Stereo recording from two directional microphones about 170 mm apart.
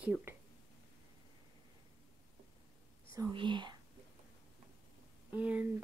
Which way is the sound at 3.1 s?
20° right (ahead or behind).